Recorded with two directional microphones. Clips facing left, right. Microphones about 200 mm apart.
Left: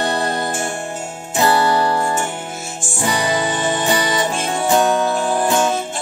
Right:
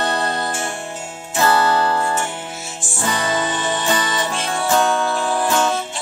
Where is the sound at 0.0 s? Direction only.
15° left (ahead or behind).